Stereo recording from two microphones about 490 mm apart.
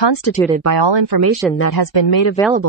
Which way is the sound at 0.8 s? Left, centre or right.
Right.